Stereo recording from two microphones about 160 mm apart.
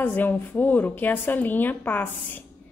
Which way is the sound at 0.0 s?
10° left (ahead or behind).